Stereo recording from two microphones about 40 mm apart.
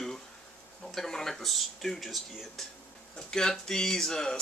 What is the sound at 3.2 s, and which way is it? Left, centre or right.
Speech, centre.